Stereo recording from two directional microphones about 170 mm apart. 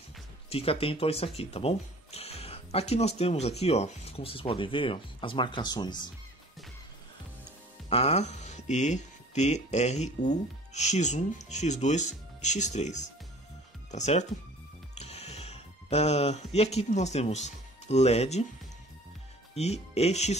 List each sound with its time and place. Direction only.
0.5 s speech: 35° left (ahead or behind)
7.9 s speech: 40° left (ahead or behind)
19.5 s speech: 40° left (ahead or behind)